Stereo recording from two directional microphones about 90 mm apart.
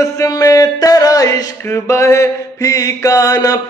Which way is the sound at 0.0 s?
35° left (ahead or behind).